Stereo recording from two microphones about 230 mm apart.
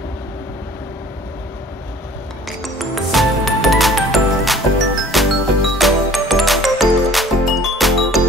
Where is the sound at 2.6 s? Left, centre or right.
Centre.